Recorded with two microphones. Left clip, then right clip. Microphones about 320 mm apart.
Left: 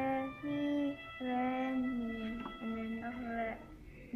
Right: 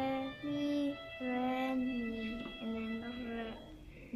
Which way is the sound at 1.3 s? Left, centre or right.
Centre.